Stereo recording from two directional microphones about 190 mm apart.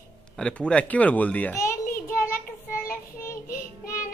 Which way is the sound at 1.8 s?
50° left (ahead or behind).